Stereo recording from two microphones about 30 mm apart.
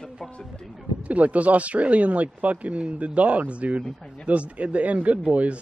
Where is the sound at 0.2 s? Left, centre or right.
Centre.